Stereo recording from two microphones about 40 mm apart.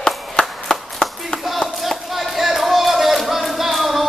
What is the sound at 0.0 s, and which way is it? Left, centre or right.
Clapping, left.